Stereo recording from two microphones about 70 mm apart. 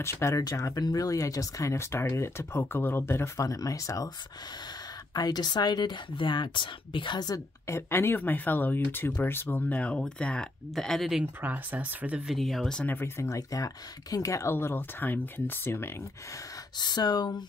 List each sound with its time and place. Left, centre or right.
0.0 s speech: left
0.4 s speech: left
3.3 s speech: left
5.1 s speech: left
7.1 s speech: left
7.6 s speech: left; by 10.5 s centre
10.7 s speech: centre
11.4 s speech: right
12.3 s speech: centre
12.8 s speech: left
13.2 s speech: left
14.5 s speech: left
16.7 s speech: left